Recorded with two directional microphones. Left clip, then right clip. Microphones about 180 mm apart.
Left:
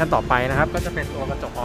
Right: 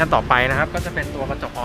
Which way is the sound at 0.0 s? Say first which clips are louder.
Right 3 dB; 20° left (ahead or behind).